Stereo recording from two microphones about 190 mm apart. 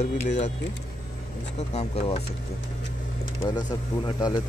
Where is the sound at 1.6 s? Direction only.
35° left (ahead or behind).